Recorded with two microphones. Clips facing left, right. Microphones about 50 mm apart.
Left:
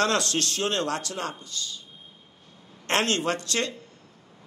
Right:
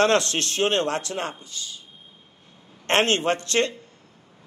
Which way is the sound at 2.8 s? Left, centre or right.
Right.